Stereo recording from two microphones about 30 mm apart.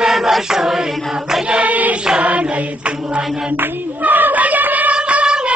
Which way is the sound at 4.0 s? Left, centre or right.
Right.